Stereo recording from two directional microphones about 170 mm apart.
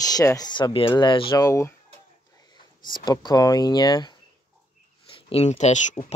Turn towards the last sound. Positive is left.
turn(degrees=45)  # may be behind; listen again after turning